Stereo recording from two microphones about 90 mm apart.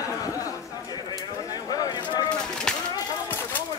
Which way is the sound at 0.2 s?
40° left (ahead or behind).